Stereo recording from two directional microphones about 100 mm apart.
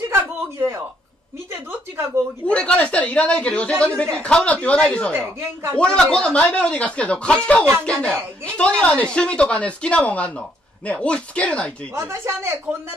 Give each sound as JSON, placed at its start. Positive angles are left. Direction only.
{"t": 0.1, "sound": "a sound", "side_deg": -25}
{"t": 2.4, "sound": "speech", "side_deg": 10}
{"t": 5.1, "sound": "speech", "side_deg": -25}
{"t": 5.8, "sound": "speech", "side_deg": 10}
{"t": 11.9, "sound": "speech", "side_deg": -25}